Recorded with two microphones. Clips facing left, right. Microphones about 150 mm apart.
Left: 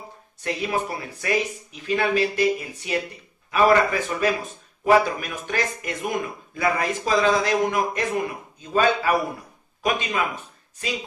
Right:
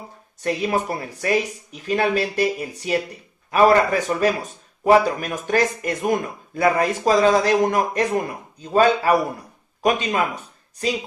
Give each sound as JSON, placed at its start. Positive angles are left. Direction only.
{"t": 0.4, "sound": "a man's voice", "side_deg": -45}